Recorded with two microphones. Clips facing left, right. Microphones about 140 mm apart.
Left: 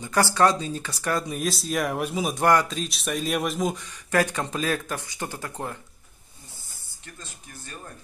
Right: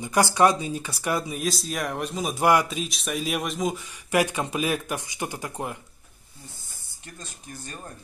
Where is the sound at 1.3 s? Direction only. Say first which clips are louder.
Left 2 dB; centre (ahead or behind).